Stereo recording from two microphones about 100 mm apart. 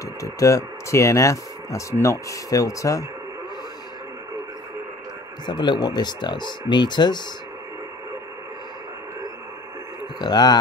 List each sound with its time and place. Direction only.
0.2 s speech: 35° left (ahead or behind)
5.5 s speech: 50° left (ahead or behind)
10.1 s speech: 40° left (ahead or behind)